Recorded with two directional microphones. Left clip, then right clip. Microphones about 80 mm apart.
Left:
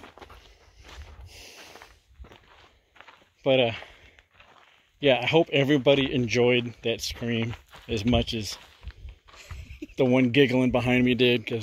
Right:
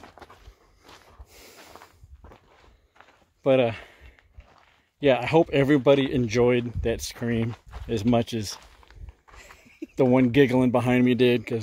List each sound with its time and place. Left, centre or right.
1.3 s a sound: right
3.4 s speech: right
5.0 s speech: right
6.8 s speech: right
7.9 s speech: right
9.3 s a sound: right
10.1 s speech: right